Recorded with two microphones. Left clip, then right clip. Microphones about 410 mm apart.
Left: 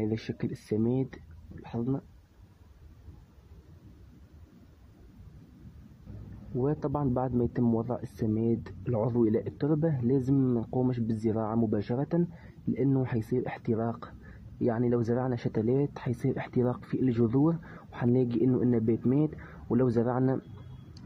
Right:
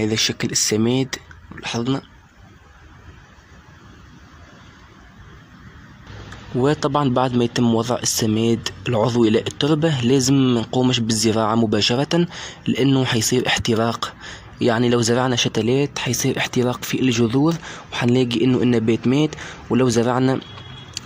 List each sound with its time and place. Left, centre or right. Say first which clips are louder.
0.0 s speech: right 13 dB; left
6.6 s speech: right 12 dB; left